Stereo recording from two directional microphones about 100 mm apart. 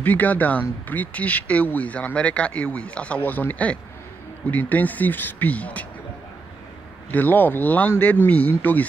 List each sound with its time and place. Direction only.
0.0 s speech: 15° left (ahead or behind)
7.1 s speech: 20° left (ahead or behind)